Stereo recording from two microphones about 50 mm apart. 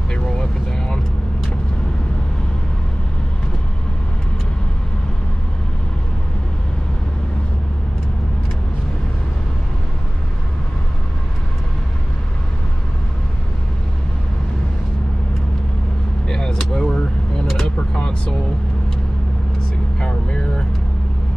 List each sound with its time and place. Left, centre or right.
0.1 s vehicle: centre
16.3 s vehicle: centre
20.0 s vehicle: centre